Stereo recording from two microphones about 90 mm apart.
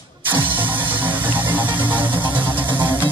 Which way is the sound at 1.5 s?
20° right (ahead or behind).